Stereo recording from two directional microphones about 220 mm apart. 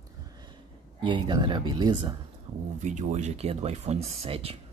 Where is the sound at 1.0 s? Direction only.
20° right (ahead or behind).